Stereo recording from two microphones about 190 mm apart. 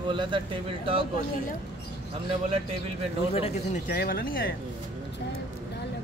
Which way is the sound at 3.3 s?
30° left (ahead or behind).